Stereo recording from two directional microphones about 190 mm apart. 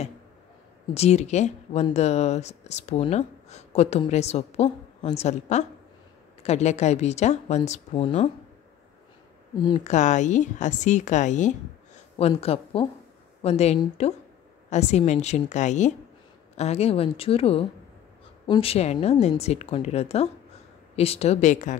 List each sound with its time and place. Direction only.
0.9 s a woman's voice: 35° left (ahead or behind)
9.8 s a woman's voice: 40° left (ahead or behind)